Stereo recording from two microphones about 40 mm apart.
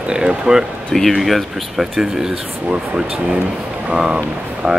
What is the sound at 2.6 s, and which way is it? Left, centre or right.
Speech, right.